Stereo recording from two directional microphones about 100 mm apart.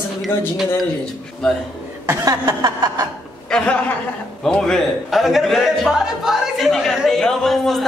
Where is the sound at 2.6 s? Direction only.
45° right (ahead or behind).